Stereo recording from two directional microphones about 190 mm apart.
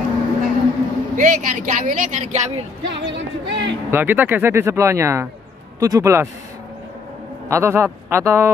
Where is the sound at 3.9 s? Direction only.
10° right (ahead or behind).